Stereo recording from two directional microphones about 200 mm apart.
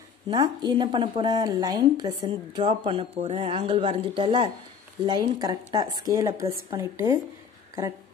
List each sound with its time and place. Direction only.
0.3 s a woman's voice: 20° right (ahead or behind)